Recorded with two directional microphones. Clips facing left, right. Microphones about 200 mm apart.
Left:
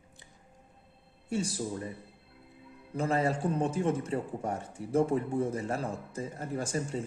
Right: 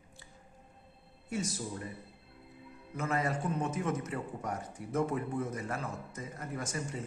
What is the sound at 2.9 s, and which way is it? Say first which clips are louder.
Speech: left 4 dB; 30° left (ahead or behind).